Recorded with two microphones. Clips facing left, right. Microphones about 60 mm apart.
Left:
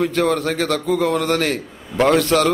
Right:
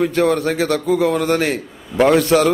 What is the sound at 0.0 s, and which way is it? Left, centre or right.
A man's voice, centre.